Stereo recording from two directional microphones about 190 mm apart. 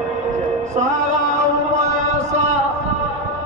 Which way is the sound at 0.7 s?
35° right (ahead or behind).